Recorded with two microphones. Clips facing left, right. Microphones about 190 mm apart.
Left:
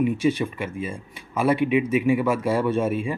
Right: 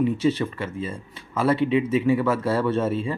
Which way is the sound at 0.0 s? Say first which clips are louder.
Even; 15° left (ahead or behind).